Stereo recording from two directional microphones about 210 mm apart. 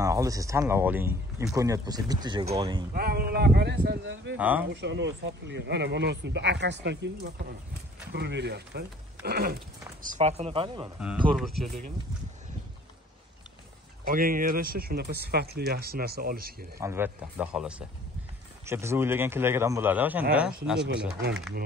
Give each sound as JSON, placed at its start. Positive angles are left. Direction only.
{"t": 0.0, "sound": "speech", "side_deg": -15}
{"t": 2.9, "sound": "speech", "side_deg": -45}
{"t": 4.4, "sound": "speech", "side_deg": -10}
{"t": 4.6, "sound": "speech", "side_deg": -55}
{"t": 10.0, "sound": "speech", "side_deg": -30}
{"t": 11.2, "sound": "speech", "side_deg": 0}
{"t": 14.0, "sound": "speech", "side_deg": -40}
{"t": 16.8, "sound": "speech", "side_deg": -10}